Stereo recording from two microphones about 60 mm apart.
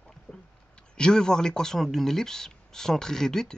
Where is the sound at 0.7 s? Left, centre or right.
Centre.